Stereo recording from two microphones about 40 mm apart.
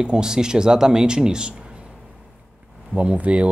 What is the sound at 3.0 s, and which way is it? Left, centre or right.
Speech, right.